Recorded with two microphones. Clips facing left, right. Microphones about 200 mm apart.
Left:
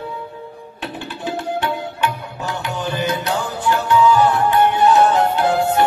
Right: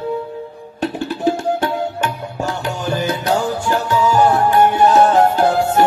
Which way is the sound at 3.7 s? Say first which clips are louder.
Left 4 dB; 40° right (ahead or behind).